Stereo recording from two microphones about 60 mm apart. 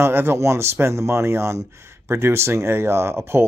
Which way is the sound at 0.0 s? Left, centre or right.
Right.